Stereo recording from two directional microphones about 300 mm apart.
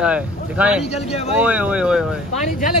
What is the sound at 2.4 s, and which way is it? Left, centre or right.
Speech, left.